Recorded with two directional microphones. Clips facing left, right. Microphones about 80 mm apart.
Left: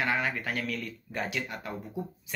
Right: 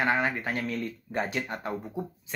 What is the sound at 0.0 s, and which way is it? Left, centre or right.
Speech, right.